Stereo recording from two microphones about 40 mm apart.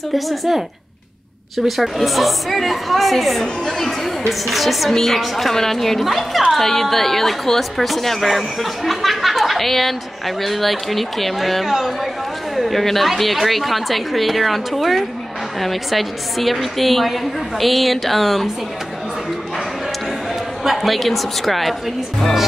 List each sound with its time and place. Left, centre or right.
0.1 s speech: centre
1.8 s speech: centre
20.6 s speech: centre